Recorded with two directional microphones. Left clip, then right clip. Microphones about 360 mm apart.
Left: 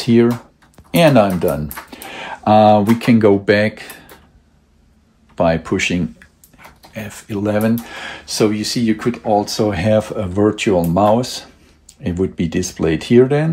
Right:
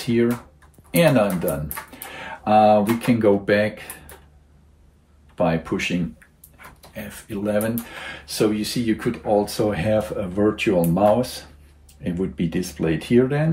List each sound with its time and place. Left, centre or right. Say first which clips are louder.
0.0 s speech: left 7 dB; centre
2.4 s speech: left 5 dB; centre
5.3 s speech: left 6 dB; centre